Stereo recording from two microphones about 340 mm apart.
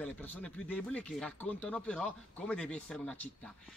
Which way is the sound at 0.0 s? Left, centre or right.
Centre.